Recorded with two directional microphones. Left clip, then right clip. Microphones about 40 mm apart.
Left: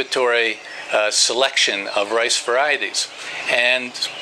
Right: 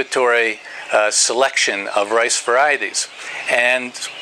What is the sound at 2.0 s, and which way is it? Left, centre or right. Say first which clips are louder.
Speech: right 3 dB; right.